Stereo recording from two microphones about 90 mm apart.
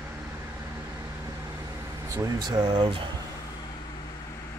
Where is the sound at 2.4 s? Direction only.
50° right (ahead or behind).